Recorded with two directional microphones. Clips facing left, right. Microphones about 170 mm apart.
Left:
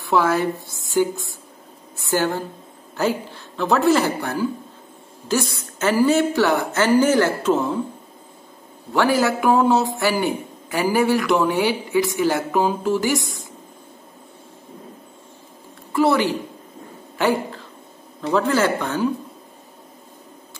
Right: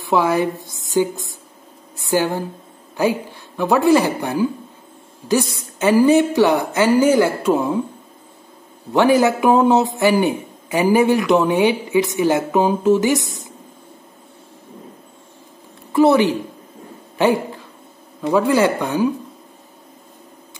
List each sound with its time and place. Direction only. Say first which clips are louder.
0.0 s a woman's voice: right 2 dB; 15° right (ahead or behind)
8.9 s a man's voice: right 4 dB; 20° right (ahead or behind)
15.9 s a woman's voice: right 5 dB; 20° right (ahead or behind)
17.2 s a sound: right 4 dB; 15° right (ahead or behind)
18.2 s a woman's voice: right 3 dB; 15° right (ahead or behind)